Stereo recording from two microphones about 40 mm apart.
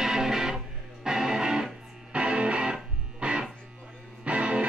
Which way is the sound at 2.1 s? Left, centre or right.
Right.